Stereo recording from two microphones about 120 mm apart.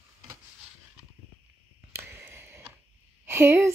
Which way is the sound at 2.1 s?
20° right (ahead or behind).